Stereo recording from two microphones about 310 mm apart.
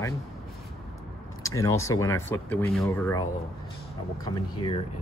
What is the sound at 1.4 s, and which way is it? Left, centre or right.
Speech, centre.